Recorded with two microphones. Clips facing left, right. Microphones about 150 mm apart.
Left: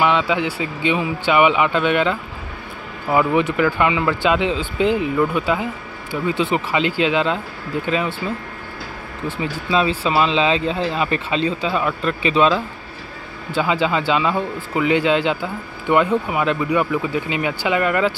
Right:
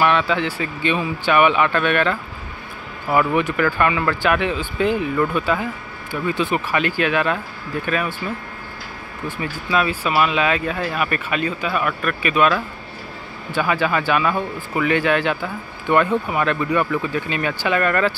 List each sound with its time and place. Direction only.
0.0 s speech: 15° left (ahead or behind)
9.4 s speech: 25° left (ahead or behind)